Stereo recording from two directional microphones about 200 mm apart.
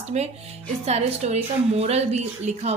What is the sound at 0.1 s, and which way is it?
A woman's voice, 35° right (ahead or behind).